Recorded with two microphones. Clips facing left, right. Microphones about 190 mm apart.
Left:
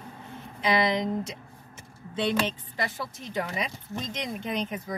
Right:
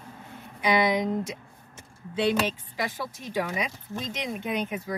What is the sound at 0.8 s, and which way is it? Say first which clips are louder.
Speech: right 2 dB; 10° right (ahead or behind).